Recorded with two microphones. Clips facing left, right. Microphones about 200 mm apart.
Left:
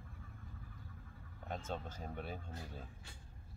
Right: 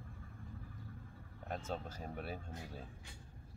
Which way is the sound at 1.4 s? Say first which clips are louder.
Right 1 dB; 5° right (ahead or behind).